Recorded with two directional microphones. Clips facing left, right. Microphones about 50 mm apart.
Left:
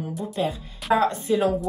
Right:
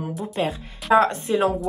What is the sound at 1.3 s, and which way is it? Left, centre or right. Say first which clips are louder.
Speech: right 1 dB; right.